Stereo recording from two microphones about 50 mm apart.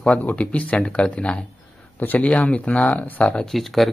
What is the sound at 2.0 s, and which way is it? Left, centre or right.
Speech, left.